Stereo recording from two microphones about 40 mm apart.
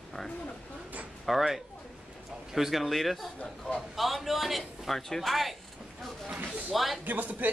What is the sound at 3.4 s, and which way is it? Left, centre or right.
Speech, left.